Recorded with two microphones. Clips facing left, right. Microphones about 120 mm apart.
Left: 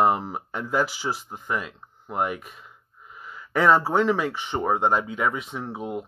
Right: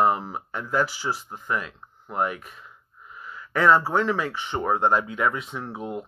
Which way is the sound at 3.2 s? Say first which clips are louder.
Even; 70° left (ahead or behind).